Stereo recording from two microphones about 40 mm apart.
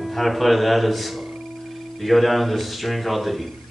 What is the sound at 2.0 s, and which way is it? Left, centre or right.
A man's voice, centre.